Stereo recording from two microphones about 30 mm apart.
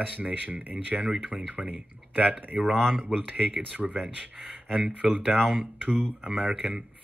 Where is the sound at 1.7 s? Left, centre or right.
Right.